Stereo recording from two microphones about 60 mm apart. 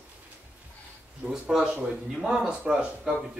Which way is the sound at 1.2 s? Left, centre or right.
Centre.